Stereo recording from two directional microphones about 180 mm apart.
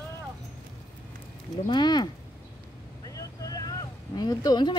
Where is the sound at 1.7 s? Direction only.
25° left (ahead or behind).